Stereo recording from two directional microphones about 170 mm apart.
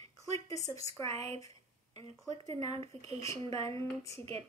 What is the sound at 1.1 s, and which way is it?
Speech, 40° right (ahead or behind).